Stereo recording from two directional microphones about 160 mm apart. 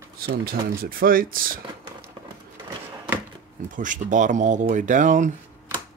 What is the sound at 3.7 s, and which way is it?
Speech, 55° right (ahead or behind).